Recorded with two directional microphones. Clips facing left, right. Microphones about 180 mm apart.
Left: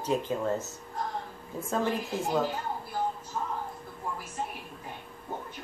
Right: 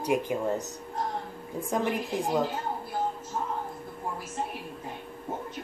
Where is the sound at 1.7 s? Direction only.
15° right (ahead or behind).